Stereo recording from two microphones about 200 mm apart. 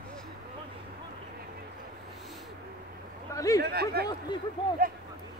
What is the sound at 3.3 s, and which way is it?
Speech, 15° left (ahead or behind).